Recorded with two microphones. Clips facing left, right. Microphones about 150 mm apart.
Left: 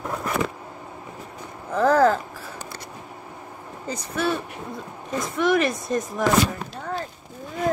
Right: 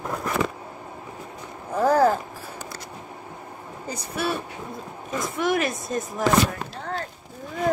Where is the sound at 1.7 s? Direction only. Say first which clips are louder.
Left 1 dB; 10° right (ahead or behind).